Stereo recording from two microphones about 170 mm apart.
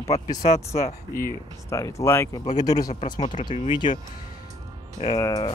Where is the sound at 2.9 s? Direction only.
40° left (ahead or behind).